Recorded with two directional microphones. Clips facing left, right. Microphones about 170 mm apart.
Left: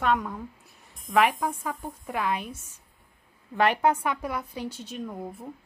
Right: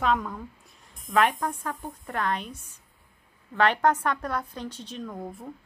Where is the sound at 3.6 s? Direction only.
10° left (ahead or behind).